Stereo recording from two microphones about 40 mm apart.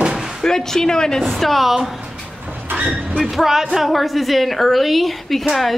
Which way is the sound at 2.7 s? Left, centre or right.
Right.